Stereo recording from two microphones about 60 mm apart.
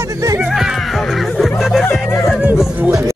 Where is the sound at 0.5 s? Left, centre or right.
Centre.